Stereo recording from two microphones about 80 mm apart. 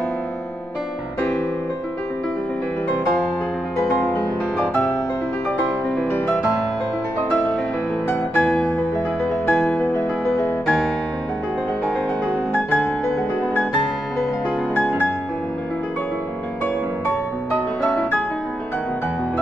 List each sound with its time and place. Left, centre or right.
8.1 s music: left